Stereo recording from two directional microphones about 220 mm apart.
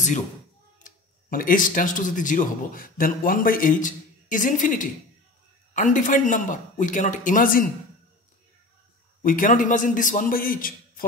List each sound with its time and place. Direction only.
0.8 s speech: 40° left (ahead or behind)
9.2 s speech: 40° left (ahead or behind)